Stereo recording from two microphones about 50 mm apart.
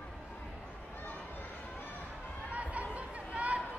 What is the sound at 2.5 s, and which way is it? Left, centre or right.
Chatter, right.